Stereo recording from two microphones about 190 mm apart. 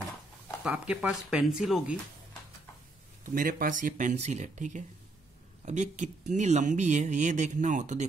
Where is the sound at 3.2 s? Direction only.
45° right (ahead or behind).